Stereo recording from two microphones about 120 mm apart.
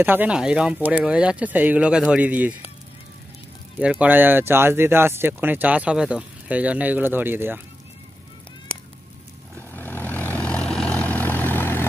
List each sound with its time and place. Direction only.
0.0 s speech: 15° right (ahead or behind)
3.8 s speech: 10° right (ahead or behind)
9.7 s vehicle: 15° left (ahead or behind)